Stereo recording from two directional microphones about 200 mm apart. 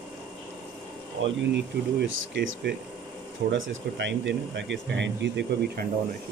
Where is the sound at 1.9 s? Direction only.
55° right (ahead or behind).